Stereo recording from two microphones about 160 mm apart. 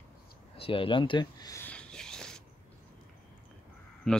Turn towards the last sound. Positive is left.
turn(degrees=5)  # may be behind; listen again after turning